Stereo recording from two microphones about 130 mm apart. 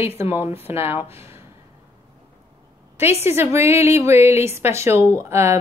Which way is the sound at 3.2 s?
20° right (ahead or behind).